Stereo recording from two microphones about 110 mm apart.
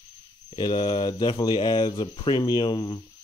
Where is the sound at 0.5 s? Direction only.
40° left (ahead or behind).